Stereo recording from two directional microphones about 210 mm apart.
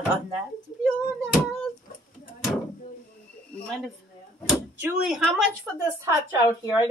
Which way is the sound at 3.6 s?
5° left (ahead or behind).